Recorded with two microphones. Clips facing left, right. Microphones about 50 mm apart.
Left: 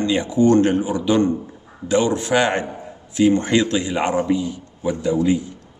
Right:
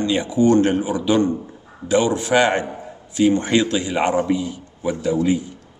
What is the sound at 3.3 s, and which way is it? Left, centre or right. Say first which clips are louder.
A man's voice: even; right.